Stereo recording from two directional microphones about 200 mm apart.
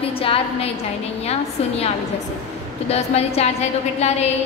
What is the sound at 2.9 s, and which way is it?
A woman's voice, 30° left (ahead or behind).